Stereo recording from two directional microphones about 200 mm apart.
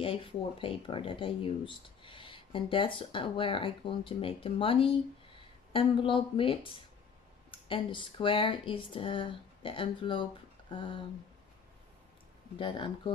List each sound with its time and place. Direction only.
0.0 s speech: 25° left (ahead or behind)
10.7 s a sound: 25° left (ahead or behind)
12.5 s speech: 25° left (ahead or behind)